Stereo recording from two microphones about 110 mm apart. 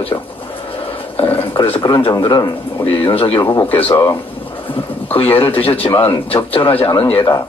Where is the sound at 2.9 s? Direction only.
55° left (ahead or behind).